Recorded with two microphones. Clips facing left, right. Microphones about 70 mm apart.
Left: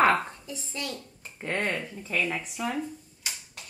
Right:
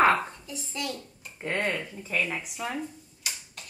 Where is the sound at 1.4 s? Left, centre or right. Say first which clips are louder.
Even; centre.